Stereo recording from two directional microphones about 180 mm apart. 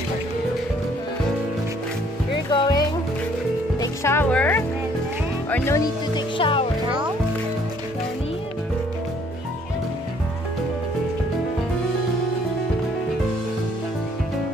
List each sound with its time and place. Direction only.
2.5 s music: 25° left (ahead or behind); by 4.6 s 10° left (ahead or behind)
5.5 s speech: 15° left (ahead or behind)